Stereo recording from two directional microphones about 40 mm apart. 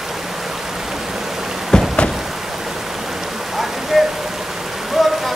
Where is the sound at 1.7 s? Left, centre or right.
Left.